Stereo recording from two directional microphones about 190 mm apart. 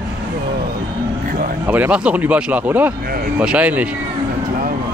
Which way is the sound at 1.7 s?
10° right (ahead or behind).